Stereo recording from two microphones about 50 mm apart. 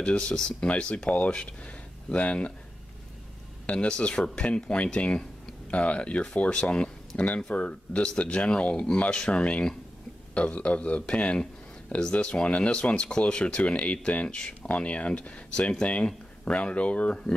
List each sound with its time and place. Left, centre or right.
0.0 s speech: centre
3.6 s speech: centre